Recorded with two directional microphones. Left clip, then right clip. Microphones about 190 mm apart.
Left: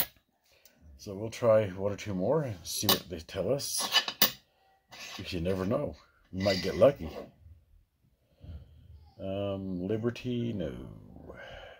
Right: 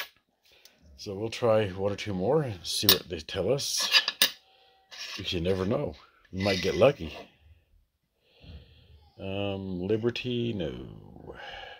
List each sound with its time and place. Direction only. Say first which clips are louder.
0.9 s speech: right 5 dB; 30° right (ahead or behind)
5.2 s speech: right 4 dB; 25° right (ahead or behind)
9.2 s speech: right 1 dB; 30° right (ahead or behind)
11.2 s a sound: right 5 dB; 25° right (ahead or behind)